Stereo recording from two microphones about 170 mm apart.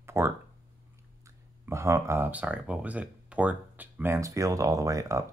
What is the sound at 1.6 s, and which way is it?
Speech, 15° right (ahead or behind).